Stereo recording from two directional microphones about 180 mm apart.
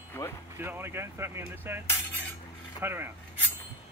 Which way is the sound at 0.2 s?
10° left (ahead or behind).